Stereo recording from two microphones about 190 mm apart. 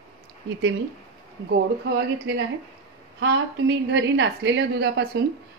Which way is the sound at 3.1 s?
65° right (ahead or behind).